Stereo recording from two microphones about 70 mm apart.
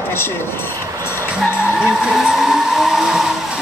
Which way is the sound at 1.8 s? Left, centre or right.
Centre.